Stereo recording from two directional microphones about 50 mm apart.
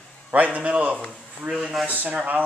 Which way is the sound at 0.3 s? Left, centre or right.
Right.